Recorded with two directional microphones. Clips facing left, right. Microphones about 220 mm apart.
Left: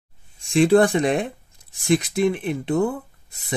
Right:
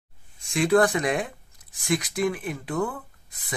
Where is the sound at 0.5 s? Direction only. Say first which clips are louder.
Left 5 dB; 30° left (ahead or behind).